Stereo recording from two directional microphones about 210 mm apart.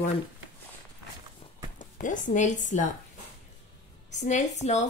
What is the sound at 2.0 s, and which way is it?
Speech, 40° left (ahead or behind).